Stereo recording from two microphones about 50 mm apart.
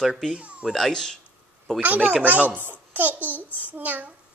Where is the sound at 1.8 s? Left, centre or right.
Right.